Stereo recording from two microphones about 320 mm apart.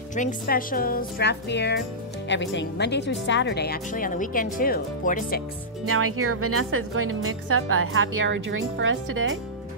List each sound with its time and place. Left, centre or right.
0.1 s speech: left
5.9 s a woman's voice: right